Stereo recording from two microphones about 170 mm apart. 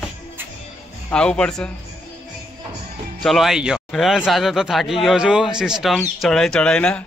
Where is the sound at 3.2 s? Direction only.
Centre (ahead or behind).